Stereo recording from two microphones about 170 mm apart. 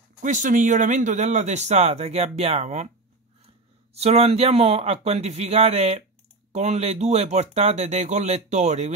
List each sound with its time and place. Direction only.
0.2 s speech: 50° right (ahead or behind)
4.0 s speech: 40° right (ahead or behind)